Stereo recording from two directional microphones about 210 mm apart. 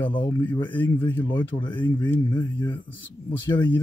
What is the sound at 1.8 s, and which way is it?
Speech, 10° left (ahead or behind).